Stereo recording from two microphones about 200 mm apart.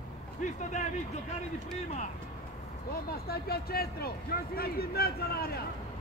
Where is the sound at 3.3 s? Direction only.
50° left (ahead or behind).